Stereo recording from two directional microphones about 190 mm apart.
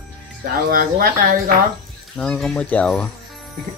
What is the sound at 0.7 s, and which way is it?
Speech, 50° right (ahead or behind).